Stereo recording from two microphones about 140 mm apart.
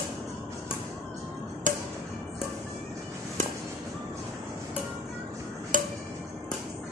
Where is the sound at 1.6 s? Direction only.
65° right (ahead or behind).